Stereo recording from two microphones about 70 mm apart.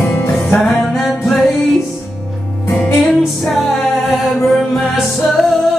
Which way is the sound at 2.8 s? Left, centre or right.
Centre.